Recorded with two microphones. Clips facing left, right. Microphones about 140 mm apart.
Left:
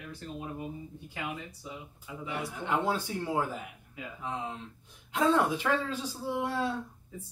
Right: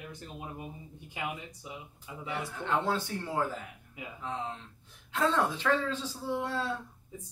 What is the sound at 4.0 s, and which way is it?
Speech, 20° right (ahead or behind).